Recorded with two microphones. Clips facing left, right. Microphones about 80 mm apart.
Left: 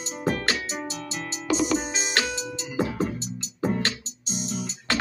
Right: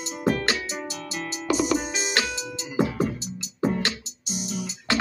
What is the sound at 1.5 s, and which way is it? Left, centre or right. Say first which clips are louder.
Music: even; centre.